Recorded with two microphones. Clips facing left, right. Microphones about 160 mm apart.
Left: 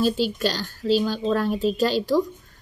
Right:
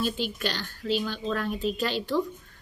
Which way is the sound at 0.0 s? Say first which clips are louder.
Left 7 dB; 35° left (ahead or behind).